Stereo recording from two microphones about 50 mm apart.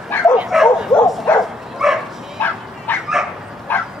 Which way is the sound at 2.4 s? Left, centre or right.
Left.